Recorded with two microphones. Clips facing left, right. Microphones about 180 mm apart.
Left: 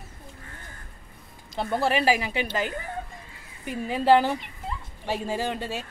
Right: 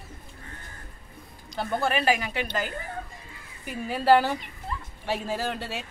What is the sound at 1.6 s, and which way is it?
Speech, 25° left (ahead or behind).